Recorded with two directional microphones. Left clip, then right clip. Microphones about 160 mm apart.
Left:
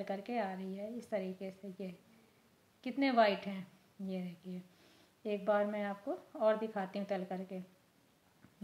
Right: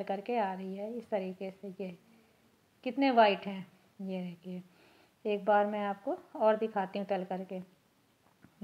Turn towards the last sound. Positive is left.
turn(degrees=-15)  # may be behind; listen again after turning